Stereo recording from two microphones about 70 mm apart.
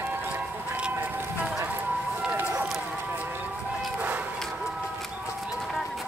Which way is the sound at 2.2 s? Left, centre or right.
Centre.